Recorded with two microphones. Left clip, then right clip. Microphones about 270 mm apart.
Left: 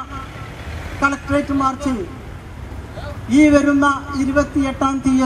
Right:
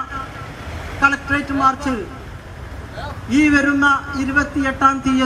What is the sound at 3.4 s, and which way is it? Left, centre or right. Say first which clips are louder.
Speech: even; left.